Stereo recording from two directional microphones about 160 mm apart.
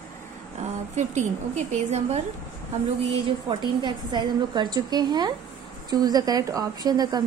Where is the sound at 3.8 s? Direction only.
30° right (ahead or behind).